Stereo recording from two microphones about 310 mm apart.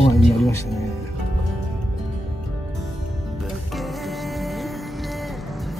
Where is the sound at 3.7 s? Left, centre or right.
Centre.